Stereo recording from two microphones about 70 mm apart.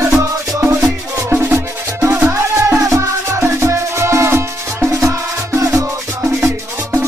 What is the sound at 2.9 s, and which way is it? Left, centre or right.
Music, right.